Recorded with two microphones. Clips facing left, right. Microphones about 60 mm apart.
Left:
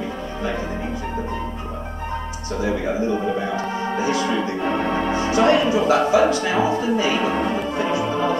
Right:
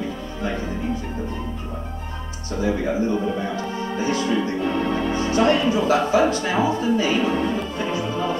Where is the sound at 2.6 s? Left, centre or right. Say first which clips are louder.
Even; left.